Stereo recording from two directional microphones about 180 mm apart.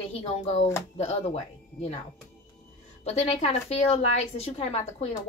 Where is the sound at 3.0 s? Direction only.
35° left (ahead or behind).